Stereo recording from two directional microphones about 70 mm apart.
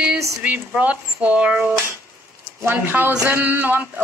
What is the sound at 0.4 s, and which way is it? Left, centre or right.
Speech, right.